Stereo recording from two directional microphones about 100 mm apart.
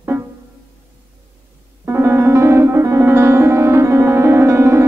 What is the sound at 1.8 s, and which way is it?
Music, 25° right (ahead or behind).